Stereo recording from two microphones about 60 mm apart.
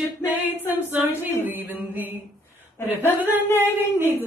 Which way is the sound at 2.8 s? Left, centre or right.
Left.